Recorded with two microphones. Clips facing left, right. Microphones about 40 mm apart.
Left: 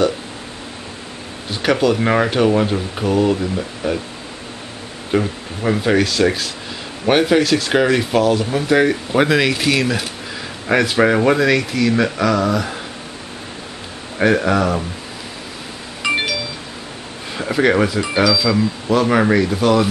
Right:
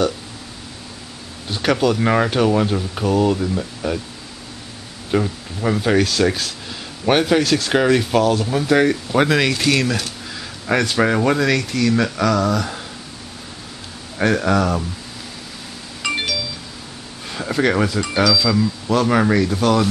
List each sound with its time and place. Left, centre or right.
1.5 s speech: centre
5.1 s speech: centre
14.1 s speech: centre
16.0 s a sound: centre
17.3 s speech: centre